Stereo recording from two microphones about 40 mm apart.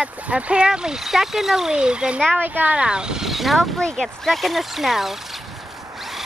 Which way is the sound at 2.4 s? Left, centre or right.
Right.